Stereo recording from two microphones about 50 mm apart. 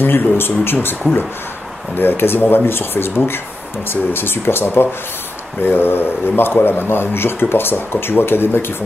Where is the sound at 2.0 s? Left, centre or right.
Left.